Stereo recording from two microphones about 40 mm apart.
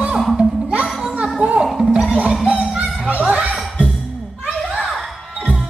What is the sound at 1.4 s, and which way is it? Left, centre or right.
Music, right.